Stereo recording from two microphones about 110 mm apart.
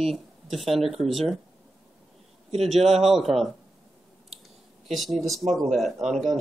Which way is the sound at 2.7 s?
70° right (ahead or behind).